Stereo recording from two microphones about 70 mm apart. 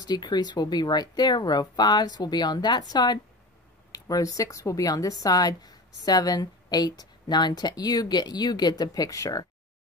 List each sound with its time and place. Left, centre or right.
0.0 s speech: left
3.9 s a woman's voice: left